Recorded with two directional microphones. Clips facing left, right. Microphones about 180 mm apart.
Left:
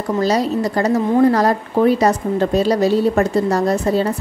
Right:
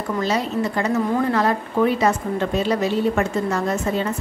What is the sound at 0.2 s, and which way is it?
Speech, 40° left (ahead or behind).